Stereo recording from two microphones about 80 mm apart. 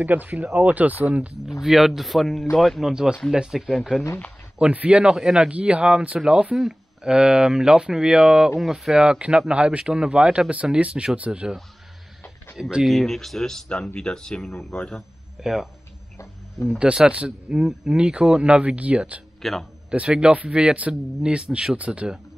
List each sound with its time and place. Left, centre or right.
0.0 s speech: right
1.6 s speech: centre
2.9 s speech: centre
4.6 s speech: centre
12.8 s speech: centre
15.4 s speech: centre
19.4 s speech: centre
19.9 s speech: centre